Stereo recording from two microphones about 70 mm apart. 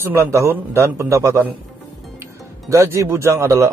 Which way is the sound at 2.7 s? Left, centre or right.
Right.